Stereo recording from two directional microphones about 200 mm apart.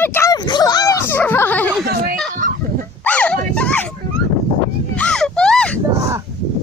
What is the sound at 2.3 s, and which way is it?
Fowl, 40° right (ahead or behind).